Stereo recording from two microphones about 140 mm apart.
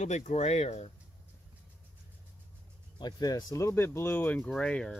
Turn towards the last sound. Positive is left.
turn(degrees=5)  # may be behind; listen again after turning